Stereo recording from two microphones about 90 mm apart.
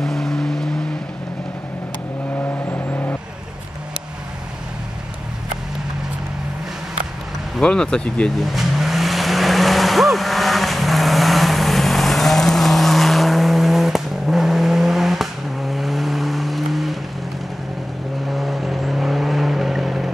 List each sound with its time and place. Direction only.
0.0 s vehicle: 5° left (ahead or behind)
2.3 s vehicle: 25° left (ahead or behind)
7.6 s speech: 10° left (ahead or behind)
8.5 s vehicle: centre (ahead or behind)
18.3 s vehicle: centre (ahead or behind)